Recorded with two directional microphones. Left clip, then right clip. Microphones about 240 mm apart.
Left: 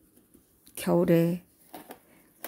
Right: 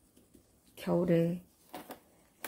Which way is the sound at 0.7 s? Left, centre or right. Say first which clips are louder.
Left 6 dB; left.